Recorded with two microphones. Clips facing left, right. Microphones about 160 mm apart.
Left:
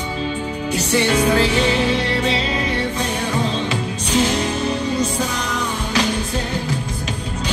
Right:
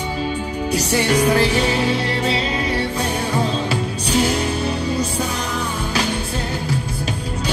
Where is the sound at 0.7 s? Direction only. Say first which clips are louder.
Even; 40° right (ahead or behind).